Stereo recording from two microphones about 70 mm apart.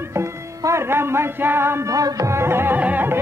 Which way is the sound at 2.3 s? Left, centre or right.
Right.